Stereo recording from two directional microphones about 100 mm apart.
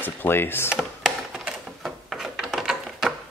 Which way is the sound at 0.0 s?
20° left (ahead or behind).